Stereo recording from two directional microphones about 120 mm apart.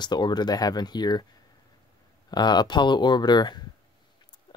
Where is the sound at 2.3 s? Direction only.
35° left (ahead or behind).